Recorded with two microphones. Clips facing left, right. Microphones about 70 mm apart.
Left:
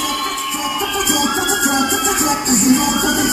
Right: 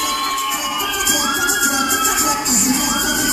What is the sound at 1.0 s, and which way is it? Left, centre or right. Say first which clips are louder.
Music: left 1 dB; left.